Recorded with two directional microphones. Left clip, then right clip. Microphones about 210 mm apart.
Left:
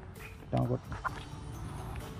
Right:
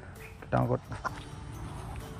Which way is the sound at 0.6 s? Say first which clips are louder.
Right 4 dB; centre (ahead or behind).